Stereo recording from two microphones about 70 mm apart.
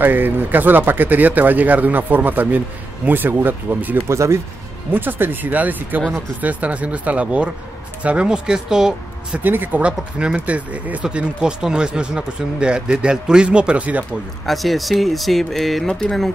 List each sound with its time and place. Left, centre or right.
0.0 s speech: right
4.1 s speech: right
4.9 s speech: right; by 9.4 s centre
9.4 s speech: right
14.4 s speech: centre